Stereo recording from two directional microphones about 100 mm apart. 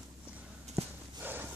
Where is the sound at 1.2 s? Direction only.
20° right (ahead or behind).